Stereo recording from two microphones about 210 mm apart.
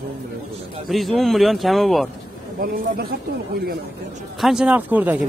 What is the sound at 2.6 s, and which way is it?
Speech, 45° right (ahead or behind).